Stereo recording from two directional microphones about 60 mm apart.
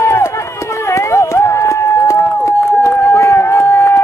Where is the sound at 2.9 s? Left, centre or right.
Left.